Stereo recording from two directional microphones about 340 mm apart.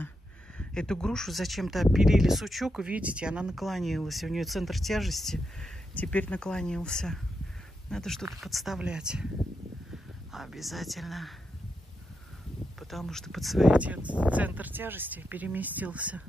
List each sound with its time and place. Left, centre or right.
0.6 s speech: centre
10.3 s speech: centre
12.9 s speech: centre